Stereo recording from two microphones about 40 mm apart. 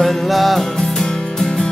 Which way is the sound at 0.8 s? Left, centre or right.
Centre.